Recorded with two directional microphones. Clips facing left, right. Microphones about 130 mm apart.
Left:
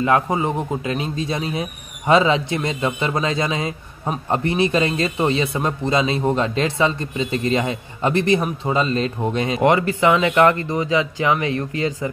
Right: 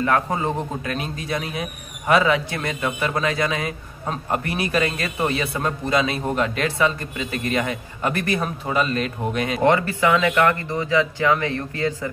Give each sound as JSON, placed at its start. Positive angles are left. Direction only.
{"t": 0.0, "sound": "a man's voice", "side_deg": 20}